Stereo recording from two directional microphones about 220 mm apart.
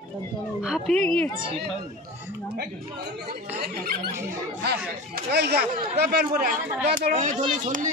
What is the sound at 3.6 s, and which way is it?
Speech, 45° right (ahead or behind).